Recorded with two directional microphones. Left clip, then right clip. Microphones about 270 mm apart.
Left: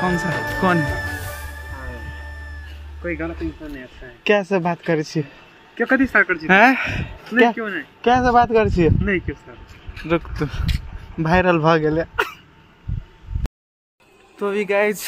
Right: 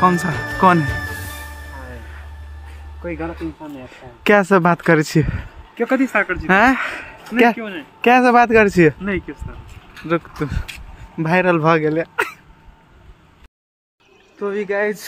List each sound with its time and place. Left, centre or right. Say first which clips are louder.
0.0 s a man's voice: right 5 dB; centre
3.0 s speech: left 1 dB; centre
4.2 s speech: right 5 dB; right
5.8 s a man's voice: left 1 dB; centre
8.0 s speech: right 3 dB; right
9.0 s a man's voice: left 2 dB; centre
14.4 s speech: left 1 dB; centre